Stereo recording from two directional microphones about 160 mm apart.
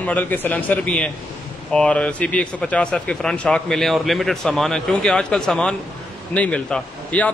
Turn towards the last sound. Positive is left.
turn(degrees=10)  # may be behind; listen again after turning